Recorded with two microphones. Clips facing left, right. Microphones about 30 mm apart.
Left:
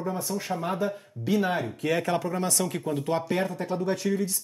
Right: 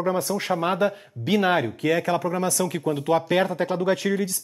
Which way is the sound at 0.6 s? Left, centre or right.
Right.